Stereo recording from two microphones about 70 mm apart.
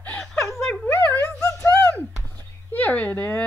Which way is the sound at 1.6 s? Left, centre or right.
Left.